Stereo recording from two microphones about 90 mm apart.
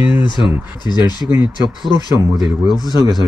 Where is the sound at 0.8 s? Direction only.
55° left (ahead or behind).